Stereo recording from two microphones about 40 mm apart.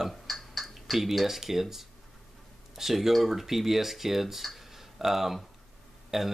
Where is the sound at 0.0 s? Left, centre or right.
Centre.